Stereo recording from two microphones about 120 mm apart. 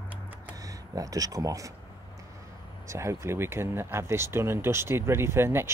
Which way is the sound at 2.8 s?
25° right (ahead or behind).